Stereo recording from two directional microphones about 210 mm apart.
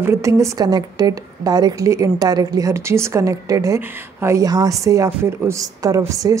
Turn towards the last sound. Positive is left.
turn(degrees=-15)  # may be behind; listen again after turning